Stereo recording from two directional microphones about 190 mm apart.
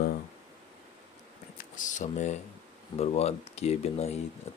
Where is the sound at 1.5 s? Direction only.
40° left (ahead or behind).